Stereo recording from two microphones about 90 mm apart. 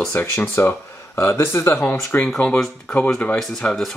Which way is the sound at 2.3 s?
10° left (ahead or behind).